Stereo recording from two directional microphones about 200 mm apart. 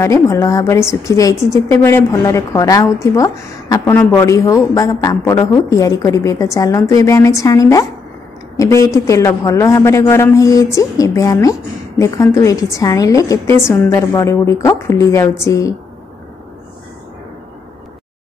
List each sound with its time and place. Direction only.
0.0 s a woman's voice: 15° left (ahead or behind)